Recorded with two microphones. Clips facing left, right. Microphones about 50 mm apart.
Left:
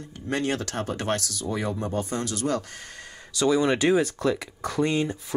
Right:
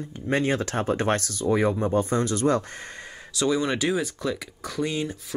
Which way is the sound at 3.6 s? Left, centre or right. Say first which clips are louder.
Left 4 dB; centre.